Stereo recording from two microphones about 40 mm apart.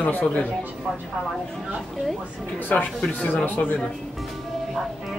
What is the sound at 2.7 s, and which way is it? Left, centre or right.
A man's voice, left.